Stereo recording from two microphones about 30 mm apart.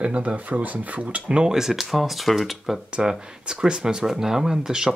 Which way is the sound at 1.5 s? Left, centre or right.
Centre.